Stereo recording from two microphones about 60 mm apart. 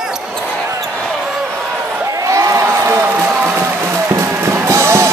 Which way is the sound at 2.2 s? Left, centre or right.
Right.